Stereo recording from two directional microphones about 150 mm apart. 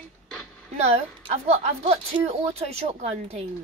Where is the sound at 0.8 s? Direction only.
45° right (ahead or behind).